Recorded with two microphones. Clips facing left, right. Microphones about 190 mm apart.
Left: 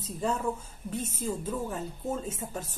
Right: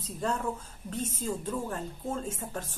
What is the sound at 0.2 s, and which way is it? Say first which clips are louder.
A woman's voice: left 1 dB; 5° left (ahead or behind).